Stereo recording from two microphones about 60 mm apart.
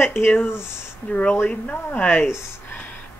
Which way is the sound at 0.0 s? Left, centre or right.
Left.